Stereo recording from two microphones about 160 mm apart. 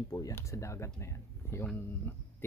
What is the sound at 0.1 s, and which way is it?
Speech, 20° left (ahead or behind).